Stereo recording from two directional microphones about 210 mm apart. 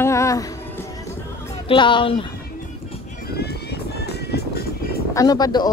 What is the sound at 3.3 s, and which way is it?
Music, 50° left (ahead or behind).